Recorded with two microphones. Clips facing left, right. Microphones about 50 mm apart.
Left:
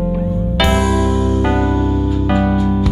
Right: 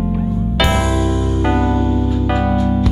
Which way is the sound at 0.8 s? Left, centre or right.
Centre.